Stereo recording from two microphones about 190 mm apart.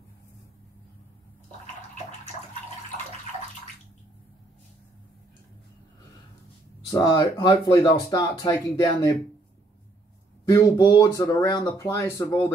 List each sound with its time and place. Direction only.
6.9 s speech: 20° left (ahead or behind)
10.5 s speech: 20° left (ahead or behind)